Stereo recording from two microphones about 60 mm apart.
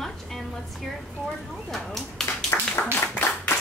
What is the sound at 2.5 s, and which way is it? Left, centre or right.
Clapping, left.